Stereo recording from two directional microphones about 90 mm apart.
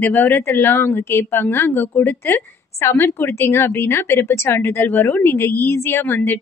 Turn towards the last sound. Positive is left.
turn(degrees=25)  # may be behind; listen again after turning